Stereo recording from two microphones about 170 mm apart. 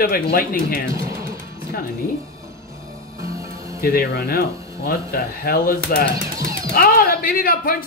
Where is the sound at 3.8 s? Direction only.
65° left (ahead or behind).